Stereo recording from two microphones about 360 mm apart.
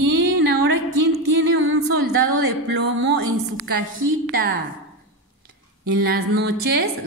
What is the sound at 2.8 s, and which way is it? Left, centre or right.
Speech, right.